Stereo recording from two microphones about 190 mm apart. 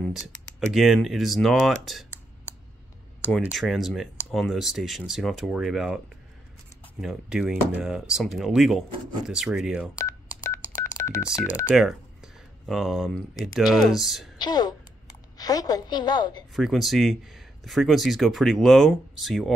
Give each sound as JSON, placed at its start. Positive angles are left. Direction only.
{"t": 0.1, "sound": "speech", "side_deg": 0}
{"t": 3.5, "sound": "speech", "side_deg": 0}
{"t": 7.0, "sound": "speech", "side_deg": 0}
{"t": 9.9, "sound": "telephone dialing", "side_deg": 15}
{"t": 11.7, "sound": "speech", "side_deg": 0}
{"t": 14.4, "sound": "a woman's voice", "side_deg": 20}
{"t": 16.5, "sound": "speech", "side_deg": 0}